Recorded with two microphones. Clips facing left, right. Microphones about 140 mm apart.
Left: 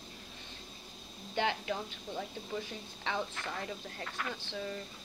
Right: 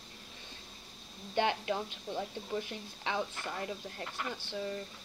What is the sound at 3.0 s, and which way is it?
Speech, 15° right (ahead or behind).